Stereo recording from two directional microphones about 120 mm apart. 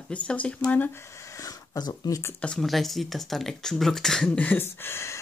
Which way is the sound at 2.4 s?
5° left (ahead or behind).